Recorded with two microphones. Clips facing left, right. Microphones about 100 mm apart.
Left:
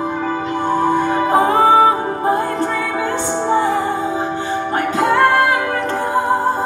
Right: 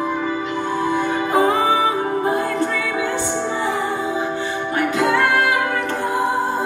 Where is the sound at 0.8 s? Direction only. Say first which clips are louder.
Left 4 dB; 45° left (ahead or behind).